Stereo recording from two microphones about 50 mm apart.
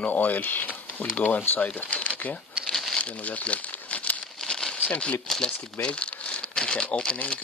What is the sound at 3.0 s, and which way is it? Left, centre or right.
Crumpling, left.